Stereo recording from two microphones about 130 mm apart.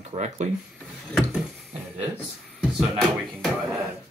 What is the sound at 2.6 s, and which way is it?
Speech, centre (ahead or behind).